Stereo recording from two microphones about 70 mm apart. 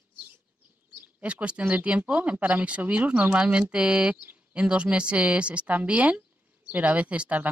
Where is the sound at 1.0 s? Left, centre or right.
Right.